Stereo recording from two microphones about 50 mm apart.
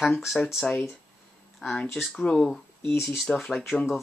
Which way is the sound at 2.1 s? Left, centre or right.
Centre.